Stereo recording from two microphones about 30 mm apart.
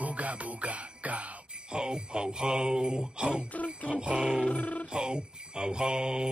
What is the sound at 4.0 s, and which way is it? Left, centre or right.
Grunt, right.